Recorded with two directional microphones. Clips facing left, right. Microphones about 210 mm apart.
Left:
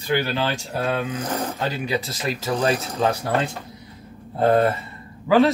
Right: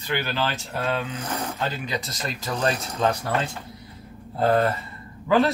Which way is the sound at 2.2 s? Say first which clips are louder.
Left 4 dB; 5° left (ahead or behind).